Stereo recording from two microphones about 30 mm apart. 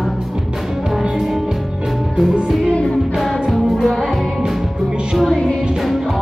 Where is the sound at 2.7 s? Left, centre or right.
Left.